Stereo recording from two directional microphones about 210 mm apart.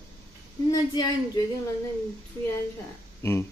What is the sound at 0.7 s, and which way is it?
Speech, 20° left (ahead or behind).